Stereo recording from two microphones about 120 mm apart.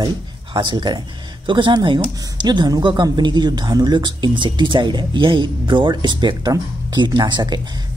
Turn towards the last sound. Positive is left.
turn(degrees=-35)  # may be behind; listen again after turning